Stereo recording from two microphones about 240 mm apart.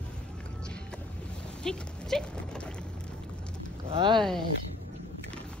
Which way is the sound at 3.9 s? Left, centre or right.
Centre.